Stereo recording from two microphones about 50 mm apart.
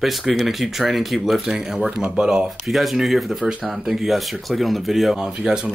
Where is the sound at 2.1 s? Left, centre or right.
Centre.